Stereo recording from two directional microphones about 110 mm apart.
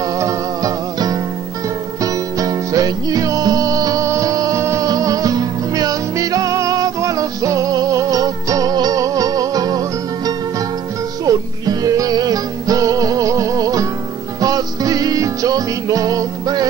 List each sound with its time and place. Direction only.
0.2 s music: 35° right (ahead or behind)